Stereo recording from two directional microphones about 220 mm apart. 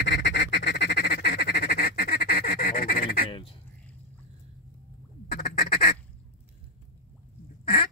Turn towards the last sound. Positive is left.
turn(degrees=45)  # may be behind; listen again after turning